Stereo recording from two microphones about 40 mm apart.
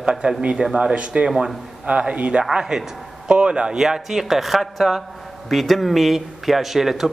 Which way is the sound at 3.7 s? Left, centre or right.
Centre.